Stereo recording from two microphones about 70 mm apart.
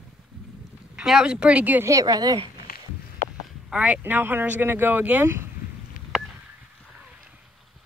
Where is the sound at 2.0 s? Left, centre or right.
Right.